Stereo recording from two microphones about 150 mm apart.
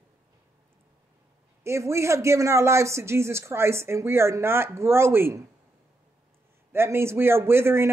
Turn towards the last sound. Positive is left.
turn(degrees=-15)  # may be behind; listen again after turning